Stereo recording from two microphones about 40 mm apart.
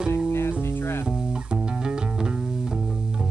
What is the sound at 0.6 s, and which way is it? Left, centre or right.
Music, left.